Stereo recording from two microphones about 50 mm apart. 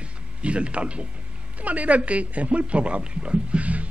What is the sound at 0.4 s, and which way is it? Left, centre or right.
Speech, right.